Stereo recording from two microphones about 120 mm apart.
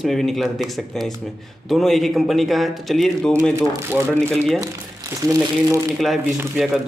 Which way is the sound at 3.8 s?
20° right (ahead or behind).